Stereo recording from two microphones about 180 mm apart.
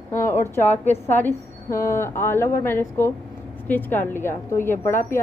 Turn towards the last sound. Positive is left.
turn(degrees=15)  # may be behind; listen again after turning